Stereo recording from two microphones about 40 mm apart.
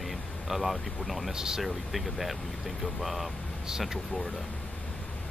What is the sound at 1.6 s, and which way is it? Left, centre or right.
Speech, centre.